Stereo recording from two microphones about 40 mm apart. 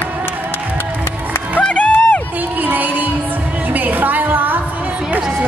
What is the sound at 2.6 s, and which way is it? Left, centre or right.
Music, right.